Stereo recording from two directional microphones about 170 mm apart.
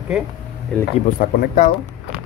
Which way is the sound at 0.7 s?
5° left (ahead or behind).